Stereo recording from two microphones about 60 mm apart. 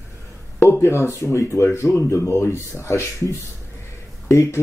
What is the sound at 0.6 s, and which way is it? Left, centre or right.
Speech, left.